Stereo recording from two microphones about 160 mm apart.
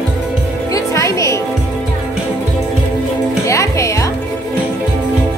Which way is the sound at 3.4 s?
20° left (ahead or behind).